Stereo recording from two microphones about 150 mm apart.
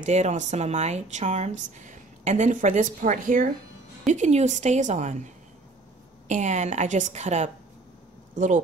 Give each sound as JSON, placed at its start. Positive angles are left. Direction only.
{"t": 0.0, "sound": "speech", "side_deg": -50}